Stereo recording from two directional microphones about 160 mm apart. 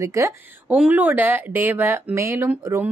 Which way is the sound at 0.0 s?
20° right (ahead or behind).